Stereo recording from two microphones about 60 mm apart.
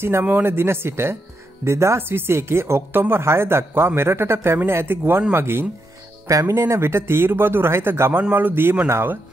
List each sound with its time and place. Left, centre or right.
0.2 s speech: right
2.0 s speech: right
6.2 s speech: right